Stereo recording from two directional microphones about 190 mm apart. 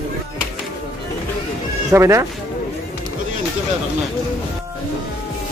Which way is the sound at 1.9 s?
15° right (ahead or behind).